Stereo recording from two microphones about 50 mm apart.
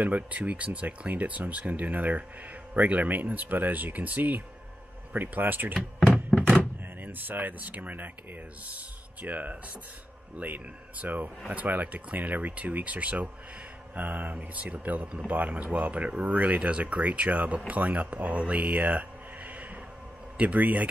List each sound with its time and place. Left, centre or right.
0.0 s speech: right
7.0 s speech: right